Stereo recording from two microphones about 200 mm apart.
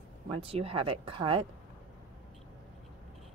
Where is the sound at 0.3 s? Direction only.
30° right (ahead or behind).